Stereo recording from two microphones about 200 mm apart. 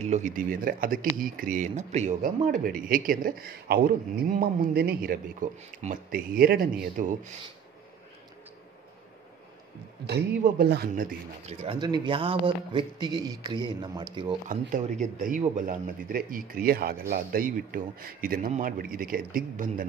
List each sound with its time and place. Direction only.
0.0 s speech: 35° right (ahead or behind)
10.4 s speech: 50° right (ahead or behind)
11.6 s speech: 25° right (ahead or behind)
14.5 s speech: 40° right (ahead or behind)